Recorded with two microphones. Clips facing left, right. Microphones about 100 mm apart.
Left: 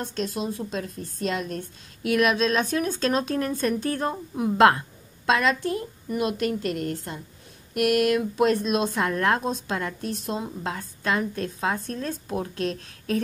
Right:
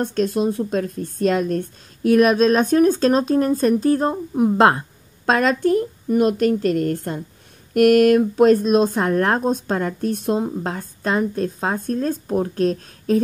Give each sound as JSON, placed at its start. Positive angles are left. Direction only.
{"t": 0.0, "sound": "a woman's voice", "side_deg": -50}
{"t": 10.1, "sound": "a woman's voice", "side_deg": -50}